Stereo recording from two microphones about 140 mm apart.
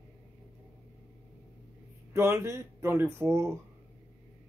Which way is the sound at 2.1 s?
20° right (ahead or behind).